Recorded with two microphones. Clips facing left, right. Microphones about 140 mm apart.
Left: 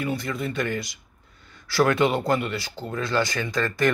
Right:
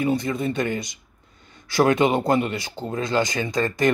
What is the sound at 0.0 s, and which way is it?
Speech, 20° right (ahead or behind).